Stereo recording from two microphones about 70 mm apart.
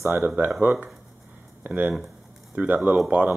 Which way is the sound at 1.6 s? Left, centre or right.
Right.